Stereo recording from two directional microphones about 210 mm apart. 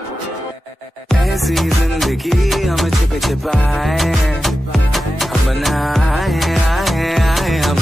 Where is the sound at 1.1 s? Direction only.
Centre (ahead or behind).